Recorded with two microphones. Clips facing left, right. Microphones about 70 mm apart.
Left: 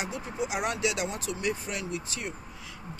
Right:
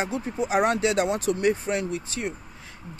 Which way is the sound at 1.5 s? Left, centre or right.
Right.